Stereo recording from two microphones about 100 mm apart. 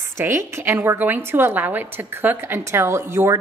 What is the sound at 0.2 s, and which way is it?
A woman's voice, 25° right (ahead or behind).